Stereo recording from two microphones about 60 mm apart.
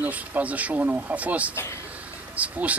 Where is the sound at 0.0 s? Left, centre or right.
Right.